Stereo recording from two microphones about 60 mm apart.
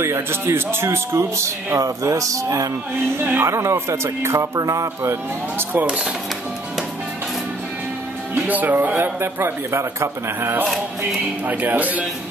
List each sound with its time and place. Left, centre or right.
0.0 s speech: right
1.8 s speech: right
3.2 s a man's voice: right
3.4 s speech: right
3.7 s speech: right
4.6 s speech: right
5.6 s a man's voice: right
8.5 s a man's voice: right
11.4 s speech: right